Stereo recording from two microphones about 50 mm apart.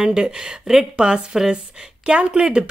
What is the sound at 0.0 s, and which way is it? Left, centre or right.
A woman's voice, centre.